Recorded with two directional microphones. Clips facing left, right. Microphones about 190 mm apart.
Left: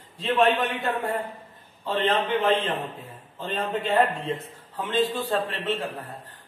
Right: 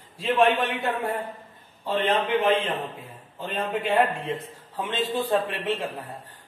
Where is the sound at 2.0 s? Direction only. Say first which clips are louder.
Right 1 dB; 10° right (ahead or behind).